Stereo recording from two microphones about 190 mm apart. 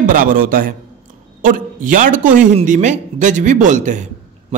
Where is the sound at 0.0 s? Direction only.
45° right (ahead or behind).